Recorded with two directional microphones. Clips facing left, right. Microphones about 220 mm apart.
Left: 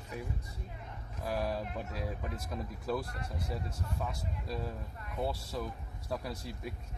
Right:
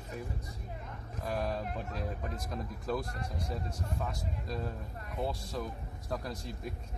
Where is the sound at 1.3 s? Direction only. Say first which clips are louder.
Even; 5° left (ahead or behind).